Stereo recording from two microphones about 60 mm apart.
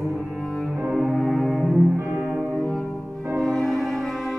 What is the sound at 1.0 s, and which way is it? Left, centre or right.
Cello, centre.